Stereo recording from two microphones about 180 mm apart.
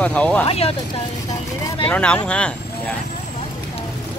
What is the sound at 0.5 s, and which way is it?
Speech, 35° left (ahead or behind).